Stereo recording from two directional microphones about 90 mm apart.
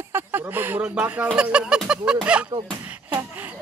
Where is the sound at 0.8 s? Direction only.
15° right (ahead or behind).